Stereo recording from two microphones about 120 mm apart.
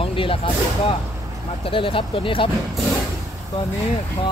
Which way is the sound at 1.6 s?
45° left (ahead or behind).